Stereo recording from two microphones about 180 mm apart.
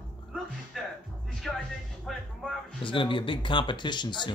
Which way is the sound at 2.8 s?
30° left (ahead or behind).